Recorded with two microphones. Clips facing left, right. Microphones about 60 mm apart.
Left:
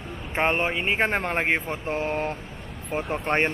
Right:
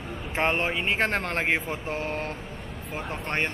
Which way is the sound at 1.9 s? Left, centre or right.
Centre.